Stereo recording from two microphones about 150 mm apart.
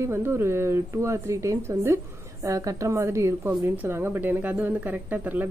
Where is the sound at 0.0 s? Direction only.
15° right (ahead or behind).